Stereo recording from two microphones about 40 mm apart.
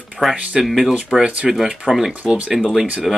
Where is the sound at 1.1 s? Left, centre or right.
Right.